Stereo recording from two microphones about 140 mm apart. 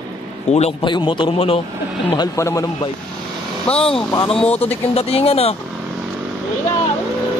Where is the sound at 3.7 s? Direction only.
10° left (ahead or behind).